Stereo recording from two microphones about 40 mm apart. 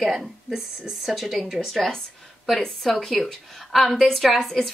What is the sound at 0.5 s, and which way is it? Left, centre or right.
Speech, centre.